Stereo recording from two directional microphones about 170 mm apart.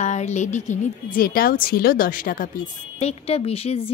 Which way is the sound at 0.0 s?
45° left (ahead or behind).